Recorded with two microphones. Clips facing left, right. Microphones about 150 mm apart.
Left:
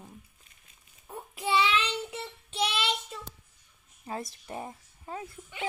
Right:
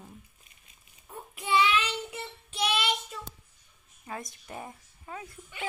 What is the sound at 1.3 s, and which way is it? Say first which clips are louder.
Child singing: right 1 dB; 30° left (ahead or behind).